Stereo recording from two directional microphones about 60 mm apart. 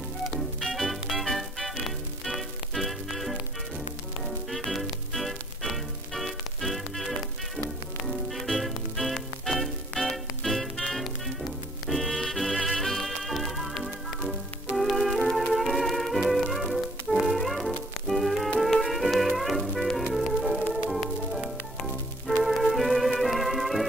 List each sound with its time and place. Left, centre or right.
0.6 s music: centre
4.5 s music: centre
14.8 s music: centre
22.4 s music: centre